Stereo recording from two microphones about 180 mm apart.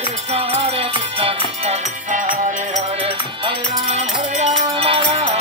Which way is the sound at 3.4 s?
35° right (ahead or behind).